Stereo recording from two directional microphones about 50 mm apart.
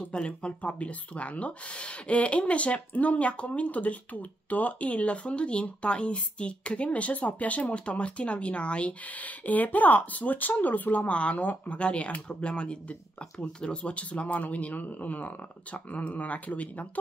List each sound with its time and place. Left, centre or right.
0.1 s speech: centre